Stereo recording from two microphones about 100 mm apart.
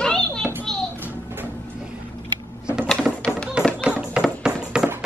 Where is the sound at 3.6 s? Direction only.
10° right (ahead or behind).